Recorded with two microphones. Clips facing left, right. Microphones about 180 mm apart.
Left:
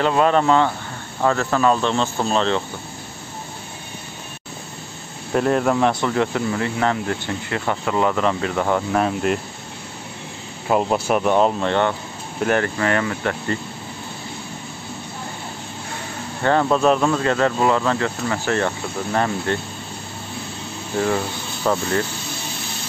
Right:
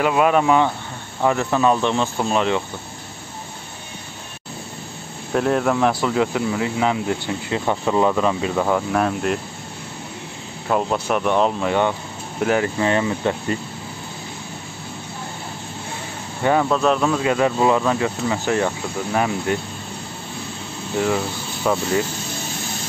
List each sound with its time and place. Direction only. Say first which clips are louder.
0.0 s speech: even; 10° right (ahead or behind)
5.3 s speech: left 1 dB; centre (ahead or behind)
8.6 s speech: left 1 dB; centre (ahead or behind)
10.7 s speech: left 2 dB; 10° left (ahead or behind)
12.4 s speech: right 1 dB; 15° right (ahead or behind)
16.6 s speech: left 1 dB; 5° left (ahead or behind)
21.0 s speech: even; centre (ahead or behind)